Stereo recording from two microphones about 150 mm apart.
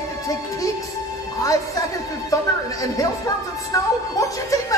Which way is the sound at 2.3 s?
20° left (ahead or behind).